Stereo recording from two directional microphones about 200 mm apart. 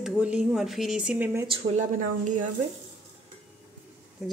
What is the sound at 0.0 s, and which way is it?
Speech, 5° right (ahead or behind).